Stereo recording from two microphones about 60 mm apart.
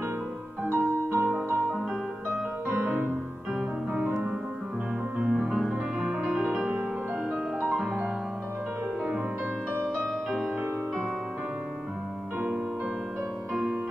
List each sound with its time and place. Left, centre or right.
0.7 s music: right
5.3 s music: centre
7.7 s music: centre